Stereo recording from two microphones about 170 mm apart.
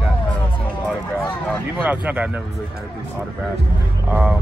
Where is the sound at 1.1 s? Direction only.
10° left (ahead or behind).